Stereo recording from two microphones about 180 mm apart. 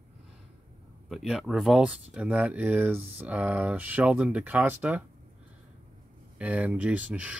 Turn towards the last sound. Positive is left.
turn(degrees=-5)  # may be behind; listen again after turning